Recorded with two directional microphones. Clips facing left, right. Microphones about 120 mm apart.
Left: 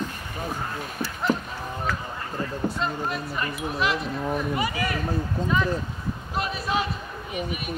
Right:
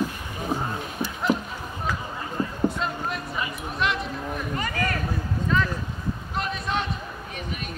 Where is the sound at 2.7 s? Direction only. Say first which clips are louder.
Left 1 dB; centre (ahead or behind).